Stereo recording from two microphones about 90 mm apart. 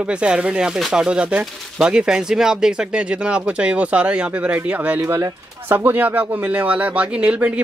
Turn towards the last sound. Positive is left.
turn(degrees=-15)  # may be behind; listen again after turning